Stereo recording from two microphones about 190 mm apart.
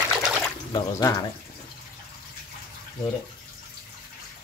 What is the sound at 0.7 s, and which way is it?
Speech, 20° left (ahead or behind).